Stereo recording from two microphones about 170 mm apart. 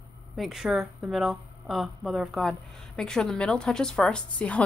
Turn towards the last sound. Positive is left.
turn(degrees=5)  # may be behind; listen again after turning